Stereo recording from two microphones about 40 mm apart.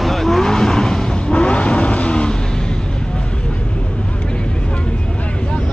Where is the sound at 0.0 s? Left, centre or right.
Centre.